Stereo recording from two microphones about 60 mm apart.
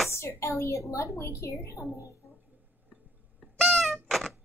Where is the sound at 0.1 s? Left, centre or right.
Left.